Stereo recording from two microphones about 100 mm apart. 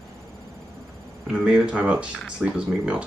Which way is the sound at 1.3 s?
10° right (ahead or behind).